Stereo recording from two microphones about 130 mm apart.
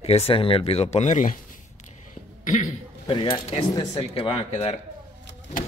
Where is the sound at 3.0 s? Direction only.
40° left (ahead or behind).